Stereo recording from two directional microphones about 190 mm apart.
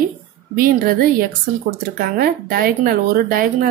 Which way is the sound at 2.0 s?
50° right (ahead or behind).